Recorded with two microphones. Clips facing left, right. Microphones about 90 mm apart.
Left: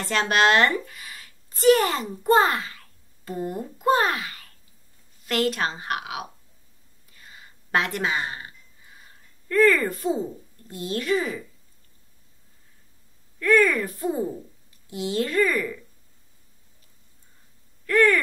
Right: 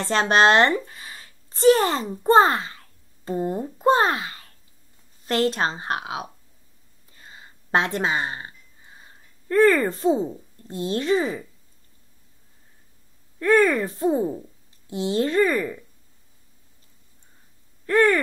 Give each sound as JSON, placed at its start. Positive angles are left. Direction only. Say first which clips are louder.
{"t": 0.0, "sound": "a woman's voice", "louder": "right 3 dB", "side_deg": -30}
{"t": 7.1, "sound": "a sound", "louder": "right 2 dB", "side_deg": -30}
{"t": 13.4, "sound": "speech", "louder": "right 2 dB", "side_deg": -30}
{"t": 17.8, "sound": "speech", "louder": "right 1 dB", "side_deg": -25}